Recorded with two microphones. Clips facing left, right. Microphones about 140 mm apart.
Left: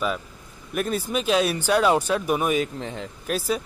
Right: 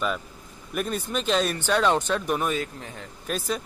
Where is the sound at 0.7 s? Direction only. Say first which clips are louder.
Left 3 dB; 5° left (ahead or behind).